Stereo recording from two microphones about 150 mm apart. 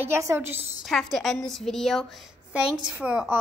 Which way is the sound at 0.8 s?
Centre (ahead or behind).